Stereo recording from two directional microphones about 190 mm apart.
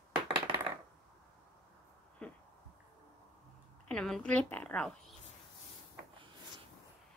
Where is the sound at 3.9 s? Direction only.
5° left (ahead or behind).